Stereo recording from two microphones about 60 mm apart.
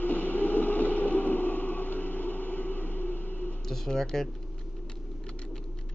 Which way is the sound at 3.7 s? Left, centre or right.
Centre.